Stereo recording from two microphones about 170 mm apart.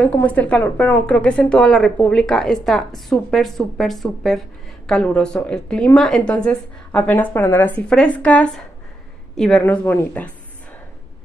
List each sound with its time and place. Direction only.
0.0 s a woman's voice: 10° left (ahead or behind)
9.6 s speech: 15° left (ahead or behind)